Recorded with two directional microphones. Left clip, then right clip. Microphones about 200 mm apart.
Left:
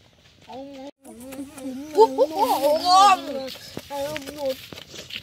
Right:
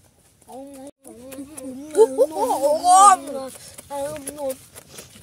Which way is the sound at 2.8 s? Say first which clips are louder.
Right 4 dB; 35° right (ahead or behind).